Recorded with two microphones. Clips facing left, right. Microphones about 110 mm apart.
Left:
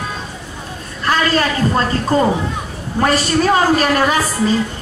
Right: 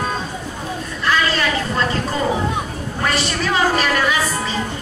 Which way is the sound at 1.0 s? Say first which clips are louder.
Left 3 dB; 40° left (ahead or behind).